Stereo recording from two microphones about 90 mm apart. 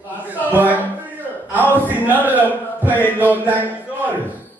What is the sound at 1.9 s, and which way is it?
A man's voice, 20° right (ahead or behind).